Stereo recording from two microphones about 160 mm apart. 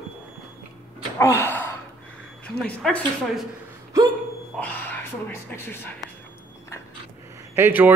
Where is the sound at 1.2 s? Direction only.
15° left (ahead or behind).